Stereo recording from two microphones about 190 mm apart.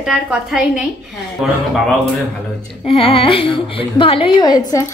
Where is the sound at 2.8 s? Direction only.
30° left (ahead or behind).